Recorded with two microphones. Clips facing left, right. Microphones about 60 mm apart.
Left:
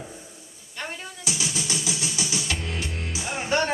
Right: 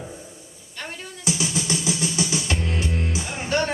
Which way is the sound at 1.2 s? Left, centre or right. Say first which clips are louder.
Right 6 dB; right.